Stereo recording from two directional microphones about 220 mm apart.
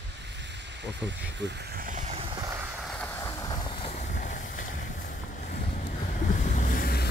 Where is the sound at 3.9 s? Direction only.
35° left (ahead or behind).